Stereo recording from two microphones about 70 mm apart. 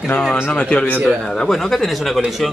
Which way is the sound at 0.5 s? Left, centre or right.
Centre.